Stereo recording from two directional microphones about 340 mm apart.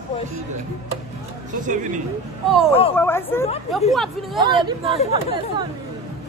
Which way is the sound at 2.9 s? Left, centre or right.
Centre.